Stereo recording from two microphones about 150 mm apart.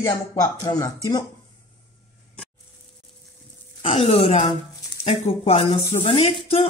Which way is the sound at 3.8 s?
40° left (ahead or behind).